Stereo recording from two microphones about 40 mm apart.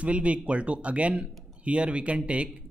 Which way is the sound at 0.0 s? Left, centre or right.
Right.